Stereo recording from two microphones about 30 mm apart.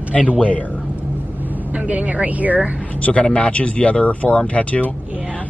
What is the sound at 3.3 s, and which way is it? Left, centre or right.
Speech, left.